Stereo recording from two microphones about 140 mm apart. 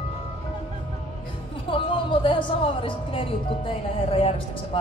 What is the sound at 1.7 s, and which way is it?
Speech, 35° left (ahead or behind).